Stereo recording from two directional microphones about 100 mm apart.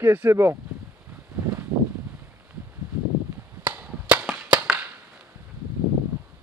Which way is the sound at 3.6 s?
15° right (ahead or behind).